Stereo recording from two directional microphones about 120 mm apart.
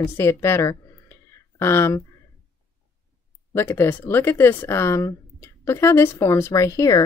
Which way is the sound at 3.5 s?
20° left (ahead or behind).